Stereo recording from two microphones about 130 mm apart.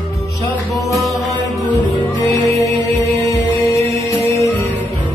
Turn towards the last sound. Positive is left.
turn(degrees=25)  # may be behind; listen again after turning